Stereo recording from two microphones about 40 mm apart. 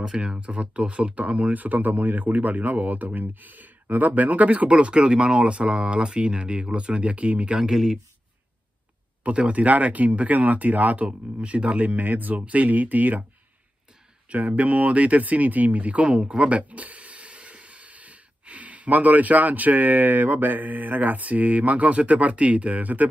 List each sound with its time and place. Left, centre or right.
0.0 s speech: centre; by 4.6 s right
4.6 s speech: right
7.7 s speech: centre
9.2 s speech: right
14.3 s speech: right